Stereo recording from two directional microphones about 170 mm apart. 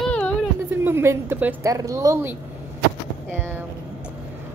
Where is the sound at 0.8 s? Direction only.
15° right (ahead or behind).